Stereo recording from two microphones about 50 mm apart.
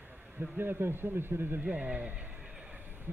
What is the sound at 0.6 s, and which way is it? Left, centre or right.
Speech, right.